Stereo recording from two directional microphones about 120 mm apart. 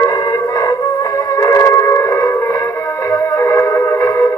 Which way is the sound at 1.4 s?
25° left (ahead or behind).